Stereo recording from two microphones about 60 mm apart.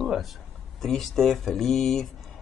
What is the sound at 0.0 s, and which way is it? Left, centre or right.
Speech, centre.